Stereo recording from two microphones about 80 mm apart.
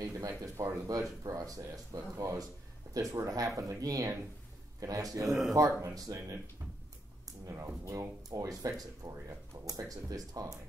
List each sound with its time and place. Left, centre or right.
0.0 s speech: right
7.4 s speech: right